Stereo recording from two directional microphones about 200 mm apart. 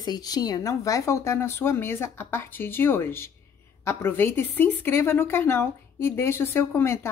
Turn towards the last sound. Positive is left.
turn(degrees=10)  # may be behind; listen again after turning